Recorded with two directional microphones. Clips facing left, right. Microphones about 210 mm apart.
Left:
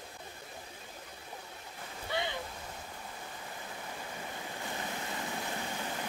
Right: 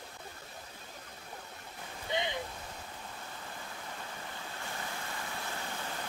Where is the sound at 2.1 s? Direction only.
20° right (ahead or behind).